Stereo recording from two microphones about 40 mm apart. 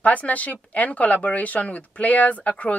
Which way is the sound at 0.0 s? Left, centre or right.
Left.